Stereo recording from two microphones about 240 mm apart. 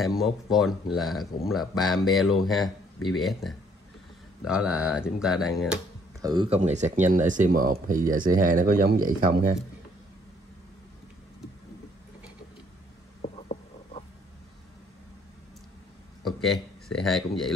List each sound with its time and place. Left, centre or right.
0.0 s speech: centre
6.2 s speech: right
13.2 s a sound: left
16.3 s speech: centre